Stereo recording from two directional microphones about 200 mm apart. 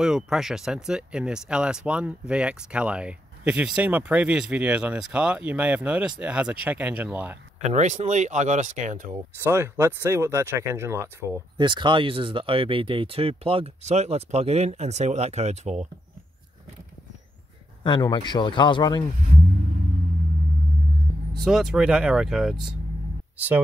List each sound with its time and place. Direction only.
0.0 s speech: centre (ahead or behind)
7.6 s speech: 35° right (ahead or behind)
9.4 s speech: 10° right (ahead or behind); by 15.9 s 35° right (ahead or behind)
17.8 s speech: 20° left (ahead or behind)
21.5 s speech: centre (ahead or behind)